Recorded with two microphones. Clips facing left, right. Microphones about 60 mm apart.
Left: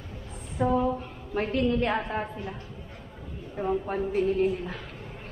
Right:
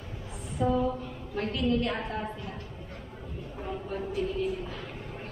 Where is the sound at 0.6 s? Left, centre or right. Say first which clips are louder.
Left 2 dB; left.